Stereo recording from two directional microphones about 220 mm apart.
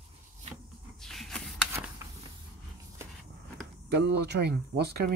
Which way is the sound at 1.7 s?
10° right (ahead or behind).